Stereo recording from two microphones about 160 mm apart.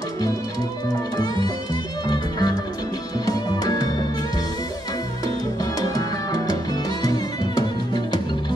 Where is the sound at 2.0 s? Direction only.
25° left (ahead or behind).